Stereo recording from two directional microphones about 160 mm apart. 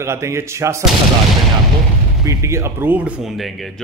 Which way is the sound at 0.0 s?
15° right (ahead or behind).